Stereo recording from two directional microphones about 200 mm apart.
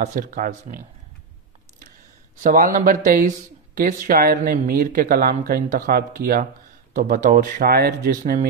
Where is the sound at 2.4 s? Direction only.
40° right (ahead or behind).